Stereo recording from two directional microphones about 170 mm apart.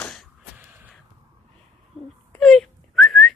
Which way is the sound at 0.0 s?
5° left (ahead or behind).